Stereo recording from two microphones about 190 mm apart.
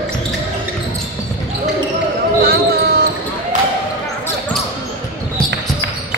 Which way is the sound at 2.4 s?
55° right (ahead or behind).